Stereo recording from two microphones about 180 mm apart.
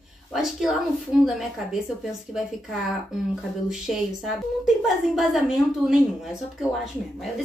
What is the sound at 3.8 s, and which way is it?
A woman's voice, centre (ahead or behind).